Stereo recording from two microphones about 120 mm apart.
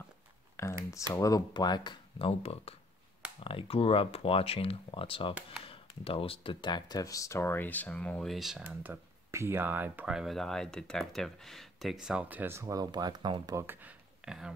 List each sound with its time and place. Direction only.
0.6 s a sound: 25° left (ahead or behind)
1.2 s speech: 30° left (ahead or behind); by 8.6 s 5° right (ahead or behind)
8.6 s speech: 15° right (ahead or behind)
10.1 s speech: centre (ahead or behind); by 13.6 s 35° right (ahead or behind)
13.6 s speech: 15° right (ahead or behind)